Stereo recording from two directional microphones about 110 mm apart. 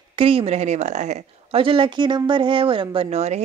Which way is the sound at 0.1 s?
55° right (ahead or behind).